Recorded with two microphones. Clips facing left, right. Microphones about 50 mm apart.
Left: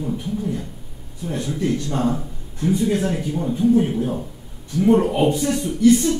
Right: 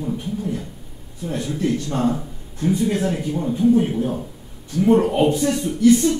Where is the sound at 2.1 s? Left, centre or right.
Centre.